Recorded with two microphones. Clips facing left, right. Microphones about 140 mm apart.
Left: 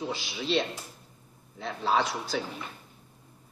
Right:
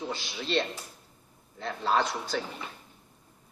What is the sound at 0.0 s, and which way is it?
A woman's voice, centre (ahead or behind).